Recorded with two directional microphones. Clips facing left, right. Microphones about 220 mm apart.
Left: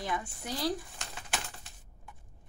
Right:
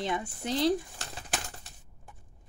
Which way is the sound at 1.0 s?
35° right (ahead or behind).